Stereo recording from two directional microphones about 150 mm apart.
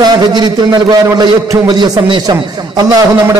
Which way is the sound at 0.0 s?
30° right (ahead or behind).